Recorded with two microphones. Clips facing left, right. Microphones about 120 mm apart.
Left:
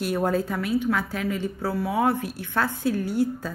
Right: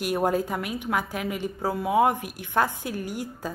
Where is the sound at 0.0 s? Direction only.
15° right (ahead or behind).